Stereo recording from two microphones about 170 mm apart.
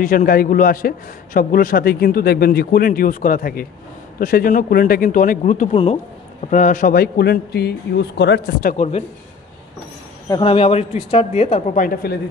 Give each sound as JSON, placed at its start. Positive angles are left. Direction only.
{"t": 0.0, "sound": "a man's voice", "side_deg": 55}
{"t": 8.7, "sound": "speech", "side_deg": 35}
{"t": 10.4, "sound": "speech", "side_deg": 35}